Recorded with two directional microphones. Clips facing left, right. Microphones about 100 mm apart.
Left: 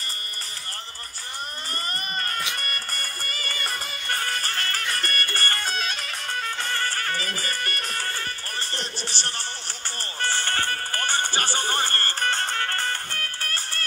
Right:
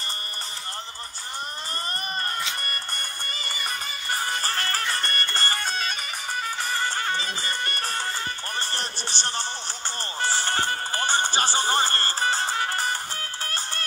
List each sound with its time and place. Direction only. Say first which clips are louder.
3.3 s music: left 1 dB; 25° right (ahead or behind)
3.5 s music: even; 5° right (ahead or behind)
4.1 s music: right 1 dB; 15° right (ahead or behind)
4.4 s music: right 2 dB; 30° right (ahead or behind)
5.6 s music: even; centre (ahead or behind); by 13.8 s 20° right (ahead or behind)